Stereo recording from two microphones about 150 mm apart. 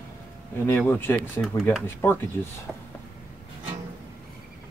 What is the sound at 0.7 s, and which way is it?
Speech, 15° left (ahead or behind).